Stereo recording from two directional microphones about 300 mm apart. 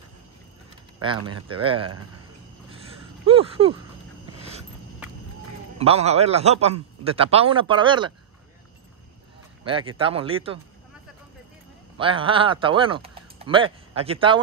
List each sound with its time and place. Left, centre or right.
1.5 s speech: centre
3.3 s a man's voice: centre
5.8 s a man's voice: centre
9.7 s speech: centre
12.0 s speech: centre